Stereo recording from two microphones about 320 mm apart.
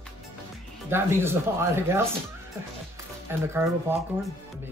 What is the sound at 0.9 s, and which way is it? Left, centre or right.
Speech, centre.